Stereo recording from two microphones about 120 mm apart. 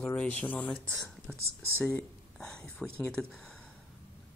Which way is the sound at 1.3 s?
20° right (ahead or behind).